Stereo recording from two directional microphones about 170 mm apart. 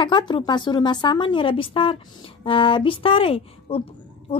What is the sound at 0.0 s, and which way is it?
Speech, 25° left (ahead or behind).